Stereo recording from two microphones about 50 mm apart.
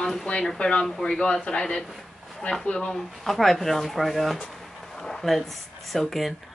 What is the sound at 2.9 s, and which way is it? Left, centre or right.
Speech, centre.